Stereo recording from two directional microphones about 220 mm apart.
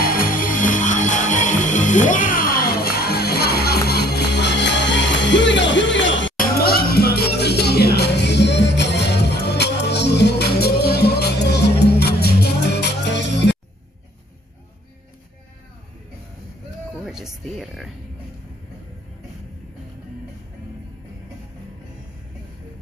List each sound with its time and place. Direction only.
0.0 s music: 40° left (ahead or behind); by 6.3 s 55° left (ahead or behind)
6.3 s music: 45° left (ahead or behind)
17.0 s music: centre (ahead or behind)